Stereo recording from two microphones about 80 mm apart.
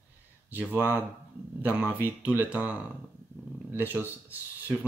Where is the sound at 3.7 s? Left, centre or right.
Right.